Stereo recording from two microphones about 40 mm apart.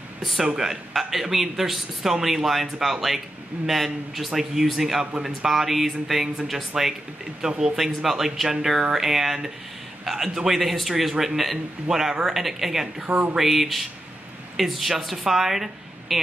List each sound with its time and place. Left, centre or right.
0.6 s a man's voice: centre